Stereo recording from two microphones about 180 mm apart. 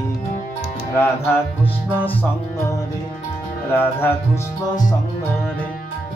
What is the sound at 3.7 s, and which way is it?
Music, 10° left (ahead or behind).